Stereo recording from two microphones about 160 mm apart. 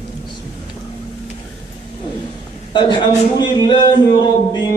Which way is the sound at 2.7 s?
30° left (ahead or behind).